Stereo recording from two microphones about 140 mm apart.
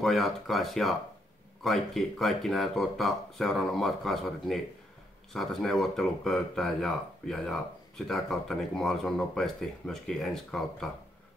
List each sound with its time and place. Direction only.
0.0 s speech: centre (ahead or behind)